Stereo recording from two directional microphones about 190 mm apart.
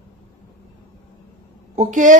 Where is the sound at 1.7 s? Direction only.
40° right (ahead or behind).